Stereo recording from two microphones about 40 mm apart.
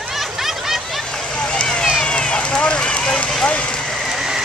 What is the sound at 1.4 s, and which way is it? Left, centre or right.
Vehicle, left.